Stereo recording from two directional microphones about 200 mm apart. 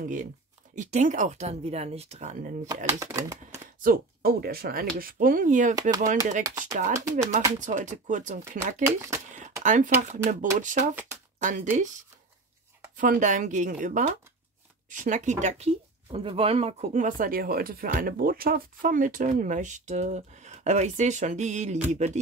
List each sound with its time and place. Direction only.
0.0 s speech: 40° right (ahead or behind)
2.9 s speech: 15° right (ahead or behind)
3.8 s speech: 45° right (ahead or behind)
7.6 s speech: 40° right (ahead or behind)
8.8 s speech: 15° right (ahead or behind)
9.3 s a sound: 40° right (ahead or behind)
10.1 s speech: 40° right (ahead or behind)
12.9 s speech: 40° right (ahead or behind)